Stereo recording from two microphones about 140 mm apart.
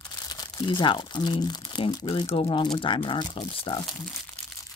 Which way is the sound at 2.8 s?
40° left (ahead or behind).